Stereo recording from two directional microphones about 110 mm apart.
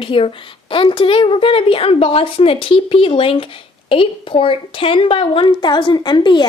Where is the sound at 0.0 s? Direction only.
50° left (ahead or behind).